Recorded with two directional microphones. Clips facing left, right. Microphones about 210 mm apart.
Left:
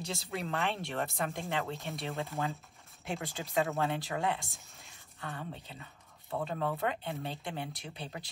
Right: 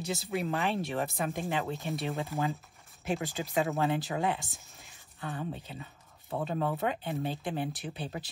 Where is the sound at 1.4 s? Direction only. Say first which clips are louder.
Right 3 dB; 15° right (ahead or behind).